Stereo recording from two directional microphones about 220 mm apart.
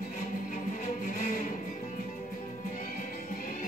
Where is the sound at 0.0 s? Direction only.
40° left (ahead or behind).